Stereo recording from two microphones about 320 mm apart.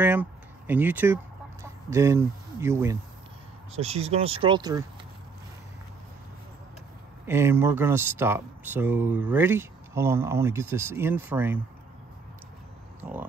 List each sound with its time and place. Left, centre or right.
0.0 s chicken: centre
3.7 s speech: centre
7.2 s speech: centre